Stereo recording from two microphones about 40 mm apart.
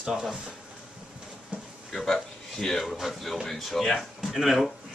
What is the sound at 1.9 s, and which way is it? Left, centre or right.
A man's voice, centre.